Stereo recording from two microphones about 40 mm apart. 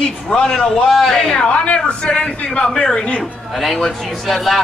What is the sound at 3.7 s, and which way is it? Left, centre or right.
Speech, centre.